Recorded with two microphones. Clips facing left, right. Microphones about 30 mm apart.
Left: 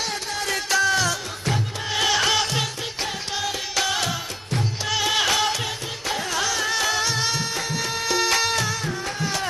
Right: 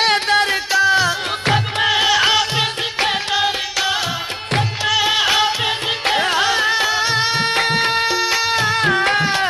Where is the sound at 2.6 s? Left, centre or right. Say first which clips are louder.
Right 9 dB; right.